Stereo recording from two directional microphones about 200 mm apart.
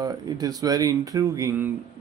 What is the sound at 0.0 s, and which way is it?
Speech, 20° right (ahead or behind).